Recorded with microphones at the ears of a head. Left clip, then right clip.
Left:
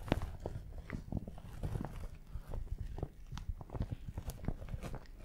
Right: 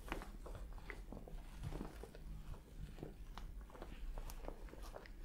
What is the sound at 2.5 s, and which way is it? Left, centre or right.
Walk, left.